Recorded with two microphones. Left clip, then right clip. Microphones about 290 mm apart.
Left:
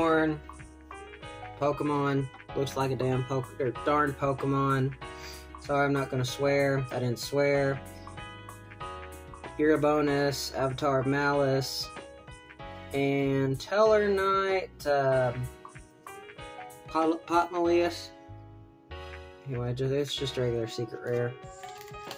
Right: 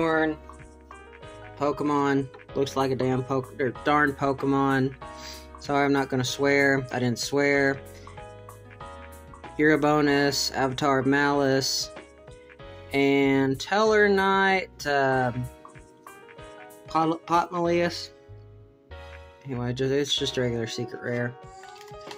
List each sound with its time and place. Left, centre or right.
1.6 s speech: right
9.6 s speech: right
12.9 s speech: right
16.9 s speech: right
19.6 s speech: right